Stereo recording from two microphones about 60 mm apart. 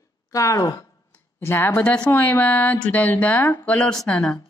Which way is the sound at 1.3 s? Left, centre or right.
Left.